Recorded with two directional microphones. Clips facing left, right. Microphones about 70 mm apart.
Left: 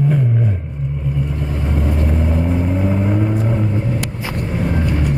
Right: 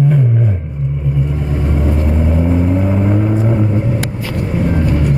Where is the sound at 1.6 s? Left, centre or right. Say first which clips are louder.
Right 3 dB; centre.